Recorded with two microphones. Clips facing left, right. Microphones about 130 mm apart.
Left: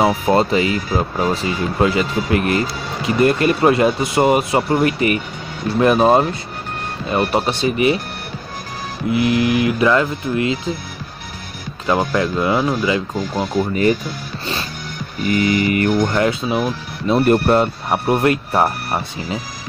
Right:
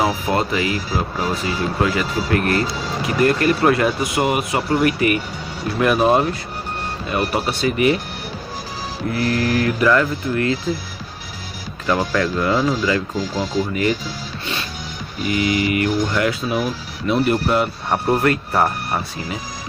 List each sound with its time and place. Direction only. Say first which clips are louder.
0.0 s speech: left 4 dB; 30° left (ahead or behind)
9.1 s speech: left 4 dB; 15° left (ahead or behind)
11.8 s speech: left 2 dB; 20° left (ahead or behind)
13.4 s speech: left 3 dB; 55° left (ahead or behind)
13.7 s speech: left 4 dB; 40° left (ahead or behind)
15.2 s mantra: left 3 dB; 45° left (ahead or behind)
16.2 s speech: left 2 dB; 25° left (ahead or behind)
17.2 s mantra: left 5 dB; 50° left (ahead or behind)
17.8 s speech: left 1 dB; 5° left (ahead or behind)
18.1 s speech: left 2 dB; 20° left (ahead or behind)